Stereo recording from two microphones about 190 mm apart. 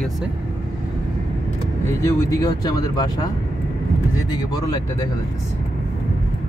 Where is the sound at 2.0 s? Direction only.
15° left (ahead or behind).